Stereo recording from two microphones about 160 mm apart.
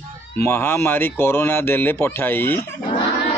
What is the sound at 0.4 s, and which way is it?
Speech, 15° left (ahead or behind).